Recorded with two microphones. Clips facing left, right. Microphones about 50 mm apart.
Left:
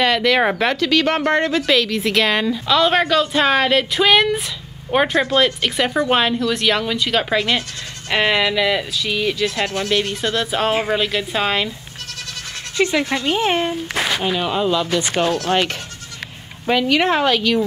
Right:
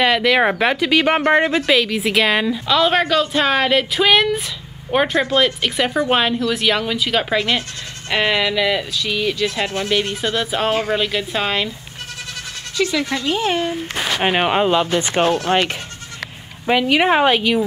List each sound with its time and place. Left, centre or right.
0.0 s a woman's voice: centre
10.7 s speech: centre
11.0 s a woman's voice: centre
12.7 s speech: left
13.1 s speech: centre
14.2 s speech: right; by 17.6 s centre